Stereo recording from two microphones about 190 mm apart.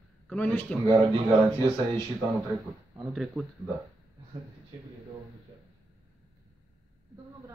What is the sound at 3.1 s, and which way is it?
Speech, centre (ahead or behind).